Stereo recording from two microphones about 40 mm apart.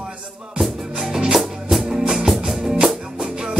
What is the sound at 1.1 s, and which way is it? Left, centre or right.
Music, centre.